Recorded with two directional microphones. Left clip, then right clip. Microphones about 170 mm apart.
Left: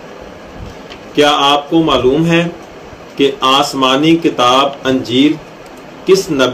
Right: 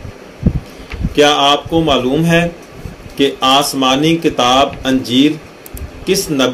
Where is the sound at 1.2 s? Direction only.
55° right (ahead or behind).